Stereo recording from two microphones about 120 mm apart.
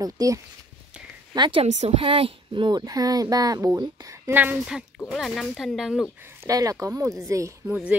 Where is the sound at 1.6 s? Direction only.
65° right (ahead or behind); by 4.2 s 30° right (ahead or behind).